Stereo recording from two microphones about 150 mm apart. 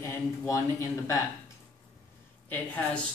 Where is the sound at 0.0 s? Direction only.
20° left (ahead or behind).